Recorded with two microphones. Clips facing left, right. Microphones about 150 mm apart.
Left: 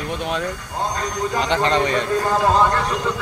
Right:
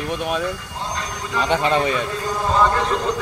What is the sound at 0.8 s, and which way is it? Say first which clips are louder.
Vehicle: left 6 dB; 45° left (ahead or behind).